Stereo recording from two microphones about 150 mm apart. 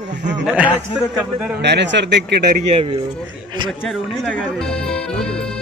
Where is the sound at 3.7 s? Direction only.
5° left (ahead or behind).